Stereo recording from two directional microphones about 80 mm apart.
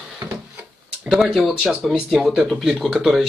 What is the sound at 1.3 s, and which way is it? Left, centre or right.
Speech, centre.